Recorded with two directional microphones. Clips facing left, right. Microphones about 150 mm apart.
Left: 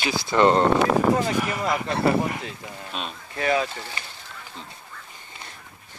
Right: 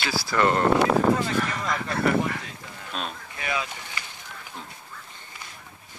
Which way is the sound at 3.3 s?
40° left (ahead or behind).